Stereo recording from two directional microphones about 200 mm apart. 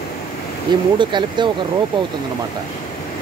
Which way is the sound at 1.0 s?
25° right (ahead or behind).